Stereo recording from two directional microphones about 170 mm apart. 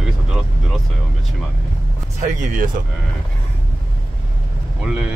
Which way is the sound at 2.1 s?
50° right (ahead or behind).